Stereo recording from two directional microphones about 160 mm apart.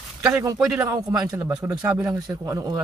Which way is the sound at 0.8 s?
20° right (ahead or behind).